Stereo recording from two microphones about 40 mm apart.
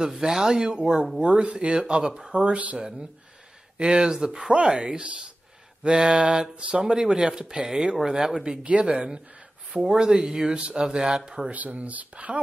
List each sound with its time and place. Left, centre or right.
0.0 s speech: centre
2.4 s speech: right
3.7 s speech: right
11.5 s speech: right